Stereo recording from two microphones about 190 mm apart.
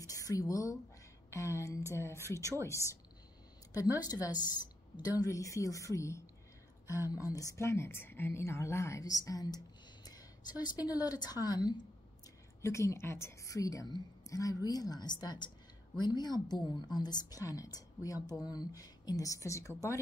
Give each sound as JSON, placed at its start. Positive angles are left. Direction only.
{"t": 0.0, "sound": "a woman's voice", "side_deg": 15}
{"t": 10.6, "sound": "a woman's voice", "side_deg": 20}